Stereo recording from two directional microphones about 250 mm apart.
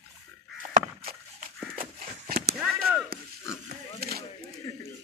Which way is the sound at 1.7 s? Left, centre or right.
Right.